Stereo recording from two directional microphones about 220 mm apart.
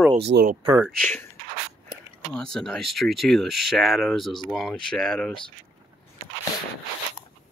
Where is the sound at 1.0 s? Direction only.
5° left (ahead or behind).